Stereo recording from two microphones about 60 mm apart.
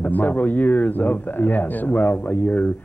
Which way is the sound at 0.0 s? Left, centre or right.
Left.